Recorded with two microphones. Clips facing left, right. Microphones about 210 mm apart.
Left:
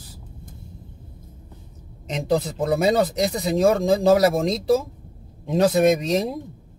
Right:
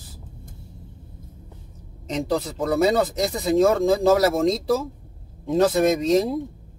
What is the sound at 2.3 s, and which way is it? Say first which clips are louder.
Speech: left 3 dB; 20° left (ahead or behind).